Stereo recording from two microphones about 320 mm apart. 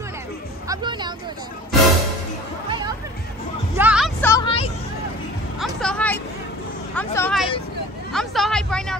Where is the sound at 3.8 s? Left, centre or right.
Centre.